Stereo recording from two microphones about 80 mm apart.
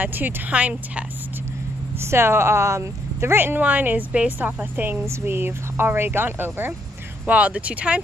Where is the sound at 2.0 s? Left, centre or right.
Right.